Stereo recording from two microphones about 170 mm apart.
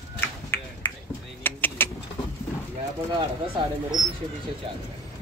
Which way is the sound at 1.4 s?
10° left (ahead or behind).